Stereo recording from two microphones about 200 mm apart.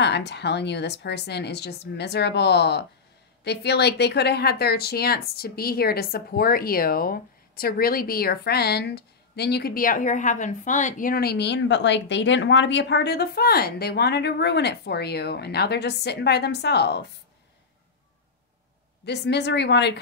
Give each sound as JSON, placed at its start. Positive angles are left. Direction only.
{"t": 0.0, "sound": "a woman's voice", "side_deg": 60}
{"t": 19.0, "sound": "a woman's voice", "side_deg": 55}